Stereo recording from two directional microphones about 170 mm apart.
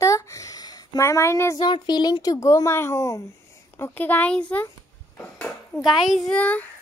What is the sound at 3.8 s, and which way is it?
Speech, 10° left (ahead or behind).